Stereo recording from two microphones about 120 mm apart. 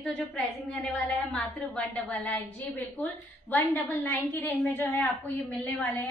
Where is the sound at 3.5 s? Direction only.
15° left (ahead or behind).